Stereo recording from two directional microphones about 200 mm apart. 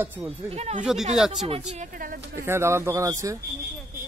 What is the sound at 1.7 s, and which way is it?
Speech, 40° right (ahead or behind).